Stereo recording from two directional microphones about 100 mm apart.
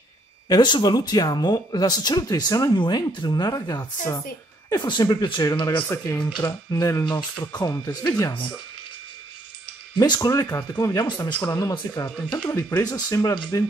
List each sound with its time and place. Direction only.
0.5 s speech: 50° left (ahead or behind)
2.7 s speech: 55° left (ahead or behind)
6.7 s speech: 30° left (ahead or behind)
9.9 s speech: 45° left (ahead or behind)
10.2 s speech: 30° left (ahead or behind)
12.4 s speech: 25° left (ahead or behind)
12.8 s speech: 40° left (ahead or behind)